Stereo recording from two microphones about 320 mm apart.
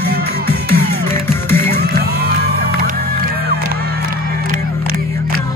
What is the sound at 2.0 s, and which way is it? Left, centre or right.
Music, right.